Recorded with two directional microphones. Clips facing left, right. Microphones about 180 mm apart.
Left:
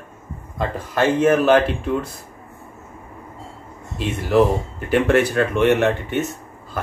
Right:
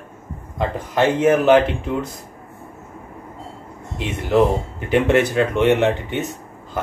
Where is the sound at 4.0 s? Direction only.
20° right (ahead or behind).